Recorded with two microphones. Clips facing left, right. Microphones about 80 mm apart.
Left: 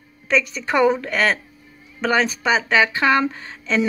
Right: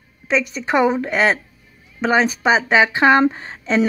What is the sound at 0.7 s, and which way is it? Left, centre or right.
A woman's voice, centre.